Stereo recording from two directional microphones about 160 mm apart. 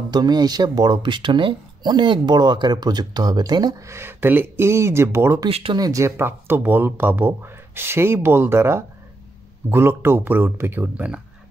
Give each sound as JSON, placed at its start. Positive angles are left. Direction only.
{"t": 0.1, "sound": "speech", "side_deg": -25}
{"t": 5.5, "sound": "speech", "side_deg": -35}
{"t": 5.8, "sound": "speech", "side_deg": -20}